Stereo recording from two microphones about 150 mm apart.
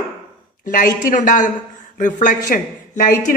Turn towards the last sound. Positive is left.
turn(degrees=65)  # may be behind; listen again after turning